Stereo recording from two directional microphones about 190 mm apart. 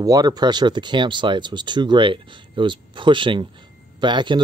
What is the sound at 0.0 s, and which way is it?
A man's voice, 20° right (ahead or behind).